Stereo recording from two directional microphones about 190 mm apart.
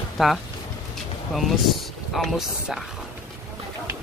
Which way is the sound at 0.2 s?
Centre (ahead or behind).